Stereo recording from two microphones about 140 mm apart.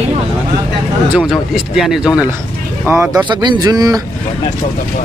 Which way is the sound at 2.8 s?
15° right (ahead or behind).